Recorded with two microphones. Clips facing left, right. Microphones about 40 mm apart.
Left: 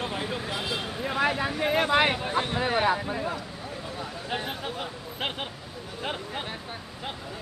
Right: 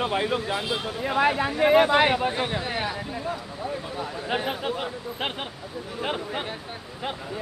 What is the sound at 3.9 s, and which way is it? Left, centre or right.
Speech, centre.